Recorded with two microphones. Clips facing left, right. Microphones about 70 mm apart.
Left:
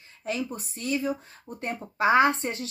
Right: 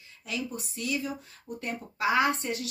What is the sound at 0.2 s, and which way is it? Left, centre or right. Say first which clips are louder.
Speech: left 4 dB; left.